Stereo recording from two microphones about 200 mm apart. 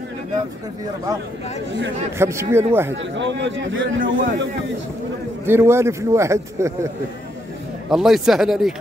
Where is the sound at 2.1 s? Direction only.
15° right (ahead or behind).